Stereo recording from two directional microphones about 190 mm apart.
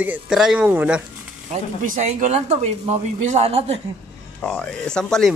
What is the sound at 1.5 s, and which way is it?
Speech, 40° right (ahead or behind).